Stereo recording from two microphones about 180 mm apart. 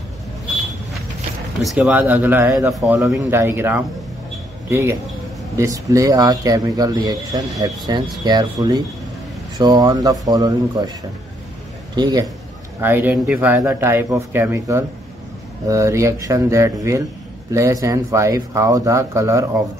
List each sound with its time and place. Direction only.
1.6 s speech: centre (ahead or behind)
3.1 s speech: 15° right (ahead or behind)
11.9 s a man's voice: 25° right (ahead or behind)
12.8 s speech: 10° right (ahead or behind)